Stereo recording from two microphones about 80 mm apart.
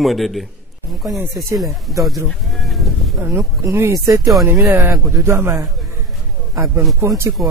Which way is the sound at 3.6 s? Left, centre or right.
Right.